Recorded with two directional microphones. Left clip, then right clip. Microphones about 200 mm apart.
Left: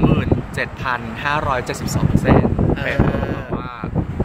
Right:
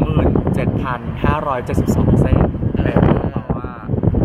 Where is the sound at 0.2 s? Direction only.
30° right (ahead or behind).